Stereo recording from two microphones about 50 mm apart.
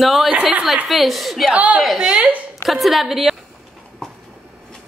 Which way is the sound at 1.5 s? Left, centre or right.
Right.